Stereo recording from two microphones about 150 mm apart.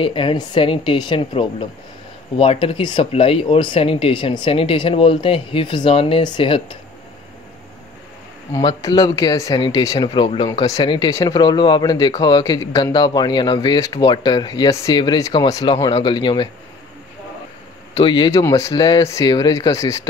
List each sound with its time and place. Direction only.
0.0 s speech: 35° left (ahead or behind)
8.5 s a man's voice: 25° left (ahead or behind)
17.9 s speech: 30° left (ahead or behind)
18.3 s a man's voice: 20° left (ahead or behind)